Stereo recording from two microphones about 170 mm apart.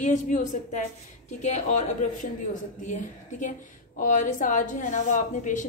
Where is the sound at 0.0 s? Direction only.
45° left (ahead or behind).